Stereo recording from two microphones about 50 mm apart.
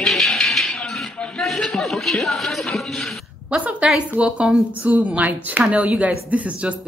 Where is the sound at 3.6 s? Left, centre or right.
Right.